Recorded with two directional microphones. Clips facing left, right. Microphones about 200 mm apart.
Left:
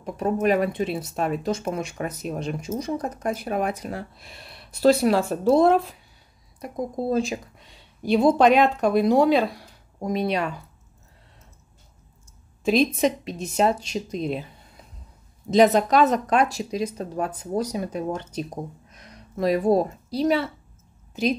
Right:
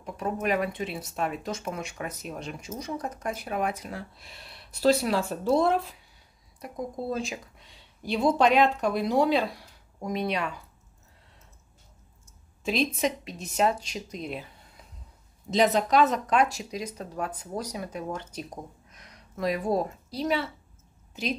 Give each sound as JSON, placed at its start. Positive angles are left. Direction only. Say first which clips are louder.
{"t": 0.0, "sound": "speech", "louder": "left 7 dB", "side_deg": 35}
{"t": 4.8, "sound": "speech", "louder": "left 5 dB", "side_deg": 50}
{"t": 7.1, "sound": "speech", "louder": "left 9 dB", "side_deg": 35}
{"t": 8.0, "sound": "speech", "louder": "left 6 dB", "side_deg": 50}
{"t": 10.0, "sound": "speech", "louder": "left 5 dB", "side_deg": 35}
{"t": 12.6, "sound": "speech", "louder": "left 7 dB", "side_deg": 45}
{"t": 13.2, "sound": "speech", "louder": "left 4 dB", "side_deg": 30}
{"t": 15.5, "sound": "speech", "louder": "left 5 dB", "side_deg": 45}